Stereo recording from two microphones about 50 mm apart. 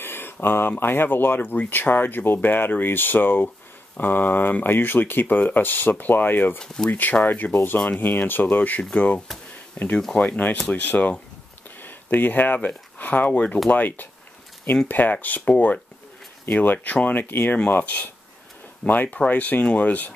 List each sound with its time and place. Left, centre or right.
0.0 s speech: left
6.6 s speech: centre
6.9 s speech: left
11.8 s a sound: left
12.6 s speech: left